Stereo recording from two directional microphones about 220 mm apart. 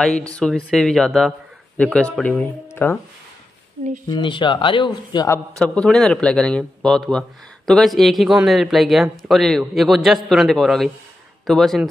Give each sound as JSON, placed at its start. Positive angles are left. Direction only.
{"t": 0.4, "sound": "a man's voice", "side_deg": 5}
{"t": 4.1, "sound": "speech", "side_deg": 20}
{"t": 5.6, "sound": "a man's voice", "side_deg": 5}